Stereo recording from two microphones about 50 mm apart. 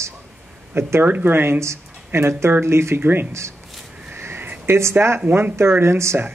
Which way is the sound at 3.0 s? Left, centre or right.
Right.